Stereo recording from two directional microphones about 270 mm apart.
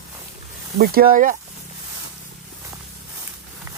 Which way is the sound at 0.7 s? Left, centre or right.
Right.